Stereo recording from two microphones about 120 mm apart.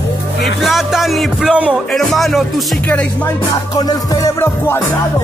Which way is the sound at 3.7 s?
30° left (ahead or behind).